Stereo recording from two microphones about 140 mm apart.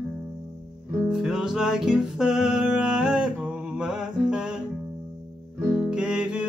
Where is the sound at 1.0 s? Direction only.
5° right (ahead or behind).